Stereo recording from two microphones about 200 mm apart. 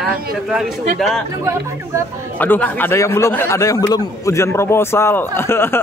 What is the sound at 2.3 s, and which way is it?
A man's voice, 10° left (ahead or behind).